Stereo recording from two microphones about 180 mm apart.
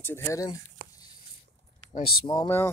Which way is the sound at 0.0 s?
15° left (ahead or behind).